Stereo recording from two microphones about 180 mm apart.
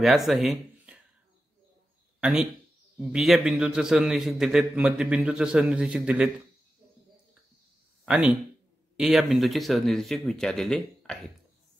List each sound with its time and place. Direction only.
0.0 s speech: centre (ahead or behind)
2.1 s a sound: 5° right (ahead or behind)
3.0 s a man's voice: 5° right (ahead or behind)
8.0 s a man's voice: 5° right (ahead or behind)